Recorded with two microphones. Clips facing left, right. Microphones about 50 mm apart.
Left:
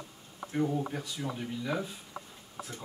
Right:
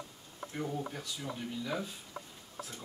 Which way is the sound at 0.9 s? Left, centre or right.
Centre.